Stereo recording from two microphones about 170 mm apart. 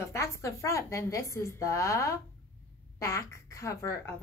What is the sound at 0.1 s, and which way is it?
A woman's voice, 15° left (ahead or behind).